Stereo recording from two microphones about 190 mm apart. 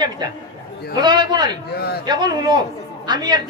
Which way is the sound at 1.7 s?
55° left (ahead or behind).